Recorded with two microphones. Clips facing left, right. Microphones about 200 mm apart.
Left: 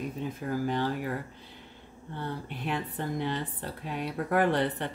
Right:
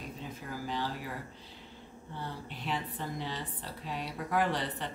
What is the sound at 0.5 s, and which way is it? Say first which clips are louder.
Speech: left 7 dB; 55° left (ahead or behind).